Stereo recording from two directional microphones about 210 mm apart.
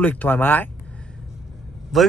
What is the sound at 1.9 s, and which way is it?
Speech, centre (ahead or behind).